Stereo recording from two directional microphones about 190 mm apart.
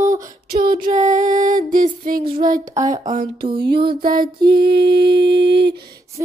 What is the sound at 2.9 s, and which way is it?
Speech, 40° right (ahead or behind).